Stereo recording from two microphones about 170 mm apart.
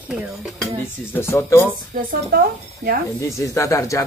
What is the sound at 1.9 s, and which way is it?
Speech, 55° right (ahead or behind).